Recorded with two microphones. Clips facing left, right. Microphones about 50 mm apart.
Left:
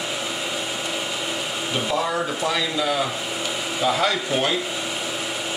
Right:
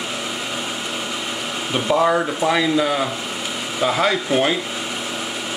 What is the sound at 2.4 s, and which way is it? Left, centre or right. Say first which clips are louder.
Speech: right 5 dB; right.